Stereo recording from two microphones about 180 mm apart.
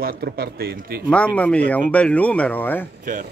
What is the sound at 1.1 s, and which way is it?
Speech, 5° left (ahead or behind).